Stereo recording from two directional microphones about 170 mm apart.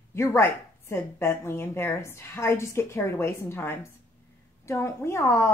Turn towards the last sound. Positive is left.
turn(degrees=15)  # may be behind; listen again after turning